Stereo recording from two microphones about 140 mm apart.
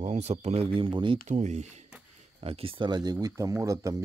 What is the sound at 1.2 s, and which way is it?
Speech, 55° right (ahead or behind).